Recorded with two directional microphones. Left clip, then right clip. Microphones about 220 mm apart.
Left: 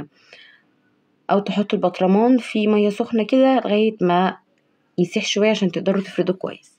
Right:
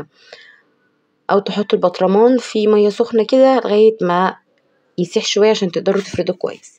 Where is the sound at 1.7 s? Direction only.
15° right (ahead or behind).